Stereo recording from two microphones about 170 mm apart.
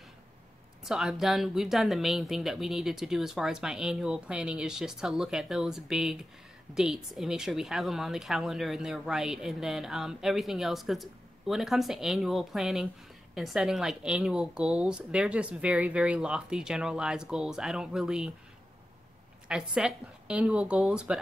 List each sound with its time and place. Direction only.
0.8 s speech: 5° right (ahead or behind)
19.4 s speech: 5° right (ahead or behind)